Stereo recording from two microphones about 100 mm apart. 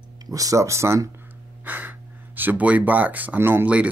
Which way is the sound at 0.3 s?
35° right (ahead or behind).